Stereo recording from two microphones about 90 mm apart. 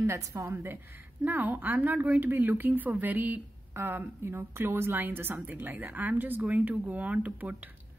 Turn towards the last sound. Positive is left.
turn(degrees=-20)  # may be behind; listen again after turning